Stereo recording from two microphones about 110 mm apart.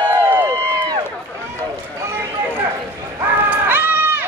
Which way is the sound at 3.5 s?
20° right (ahead or behind).